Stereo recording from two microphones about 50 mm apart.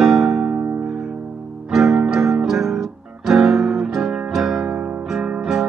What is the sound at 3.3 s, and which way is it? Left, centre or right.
Music, centre.